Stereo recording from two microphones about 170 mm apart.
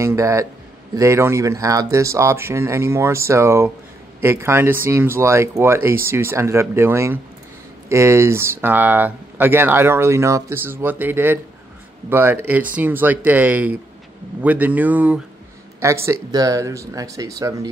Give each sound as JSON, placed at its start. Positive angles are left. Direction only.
{"t": 0.0, "sound": "speech", "side_deg": -15}